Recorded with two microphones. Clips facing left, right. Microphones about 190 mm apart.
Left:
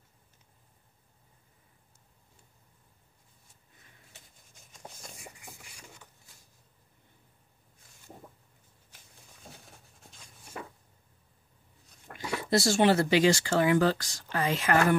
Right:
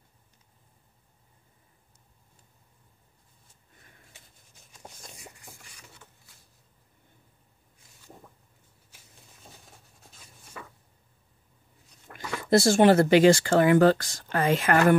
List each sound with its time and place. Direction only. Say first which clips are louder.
12.4 s speech: right 5 dB; 50° right (ahead or behind)